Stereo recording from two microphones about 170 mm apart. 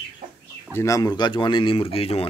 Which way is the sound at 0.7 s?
20° left (ahead or behind).